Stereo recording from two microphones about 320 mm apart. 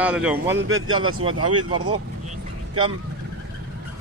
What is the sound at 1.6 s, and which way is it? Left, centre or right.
Speech, centre.